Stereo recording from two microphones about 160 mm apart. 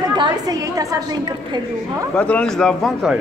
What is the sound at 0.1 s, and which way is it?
A woman's voice, 25° right (ahead or behind).